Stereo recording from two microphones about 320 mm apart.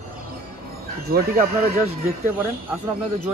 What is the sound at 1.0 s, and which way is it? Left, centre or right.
Speech, right.